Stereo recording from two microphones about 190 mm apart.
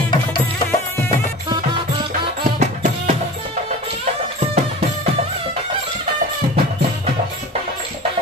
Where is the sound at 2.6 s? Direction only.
40° right (ahead or behind).